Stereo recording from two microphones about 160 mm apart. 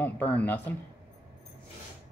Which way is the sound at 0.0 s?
10° left (ahead or behind).